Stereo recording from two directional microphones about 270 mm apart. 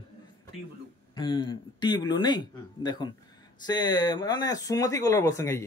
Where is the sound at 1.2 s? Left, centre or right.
Centre.